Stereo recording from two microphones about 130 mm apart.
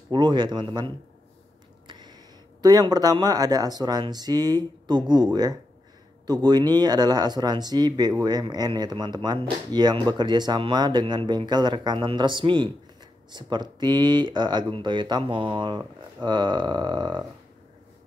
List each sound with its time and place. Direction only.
0.1 s speech: 35° right (ahead or behind)